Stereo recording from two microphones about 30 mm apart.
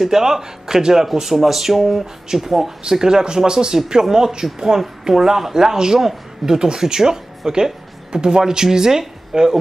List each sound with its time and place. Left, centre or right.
0.0 s speech: centre
2.8 s speech: right
6.6 s speech: right